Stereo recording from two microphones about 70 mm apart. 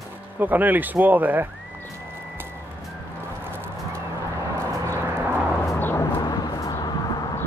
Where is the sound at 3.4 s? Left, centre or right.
Right.